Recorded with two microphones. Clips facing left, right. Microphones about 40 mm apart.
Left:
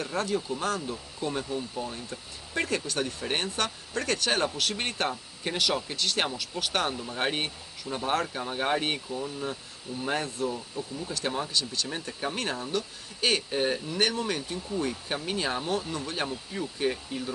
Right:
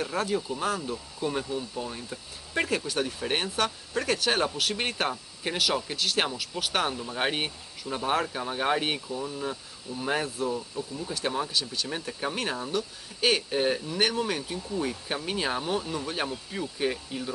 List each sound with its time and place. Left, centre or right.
0.0 s speech: centre